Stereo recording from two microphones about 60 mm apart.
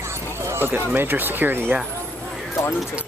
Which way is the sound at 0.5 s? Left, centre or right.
Right.